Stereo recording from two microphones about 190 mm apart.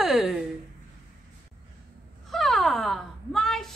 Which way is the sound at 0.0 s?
Centre (ahead or behind).